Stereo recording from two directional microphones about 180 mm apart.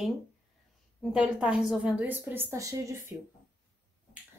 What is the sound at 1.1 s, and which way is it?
A woman's voice, 5° right (ahead or behind).